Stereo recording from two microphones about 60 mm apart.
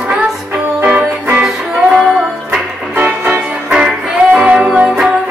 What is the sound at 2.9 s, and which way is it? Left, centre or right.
Music, right.